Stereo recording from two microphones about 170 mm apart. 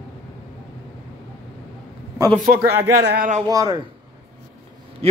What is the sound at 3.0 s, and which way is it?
Speech, 75° right (ahead or behind).